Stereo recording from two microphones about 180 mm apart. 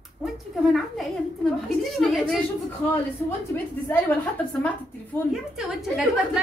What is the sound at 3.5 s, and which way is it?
A man's voice, 15° left (ahead or behind).